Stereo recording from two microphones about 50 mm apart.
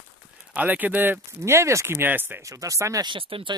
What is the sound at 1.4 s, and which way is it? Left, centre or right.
Speech, right.